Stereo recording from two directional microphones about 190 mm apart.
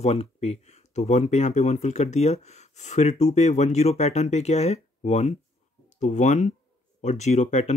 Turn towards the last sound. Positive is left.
turn(degrees=35)  # may be behind; listen again after turning